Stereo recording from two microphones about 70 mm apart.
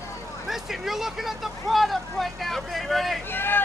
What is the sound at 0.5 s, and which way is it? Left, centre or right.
Speech, centre.